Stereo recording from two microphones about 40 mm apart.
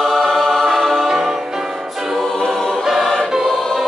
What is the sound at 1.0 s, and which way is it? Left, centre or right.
Music, centre.